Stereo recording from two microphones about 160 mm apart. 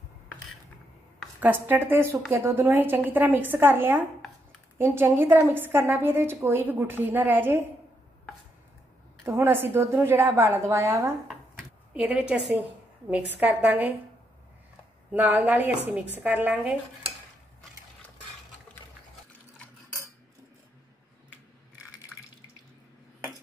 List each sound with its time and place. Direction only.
1.4 s a woman's voice: 10° right (ahead or behind)
9.2 s a woman's voice: 15° right (ahead or behind)
11.2 s a sound: 5° right (ahead or behind)
13.3 s a woman's voice: 10° right (ahead or behind)
15.0 s a woman's voice: 10° right (ahead or behind)
19.6 s cutlery: 15° left (ahead or behind)